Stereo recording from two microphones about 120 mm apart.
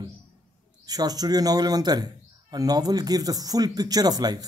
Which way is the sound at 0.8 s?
35° right (ahead or behind).